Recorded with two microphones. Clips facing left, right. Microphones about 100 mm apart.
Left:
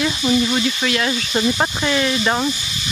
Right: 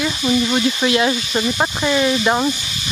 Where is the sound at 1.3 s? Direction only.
Centre (ahead or behind).